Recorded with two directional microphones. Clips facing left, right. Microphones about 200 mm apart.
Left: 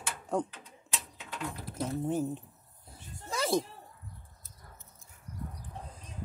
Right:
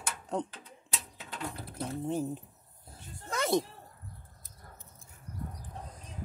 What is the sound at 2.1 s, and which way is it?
Speech, centre (ahead or behind).